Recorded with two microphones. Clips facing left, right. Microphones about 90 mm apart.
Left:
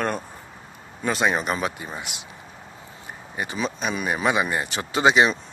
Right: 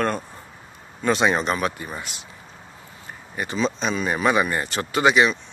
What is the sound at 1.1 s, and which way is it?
Speech, centre (ahead or behind).